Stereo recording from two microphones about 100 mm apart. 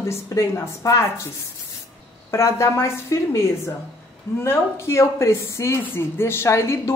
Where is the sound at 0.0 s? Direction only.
30° left (ahead or behind).